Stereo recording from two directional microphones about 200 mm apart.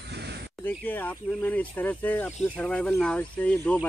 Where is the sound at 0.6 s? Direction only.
10° left (ahead or behind).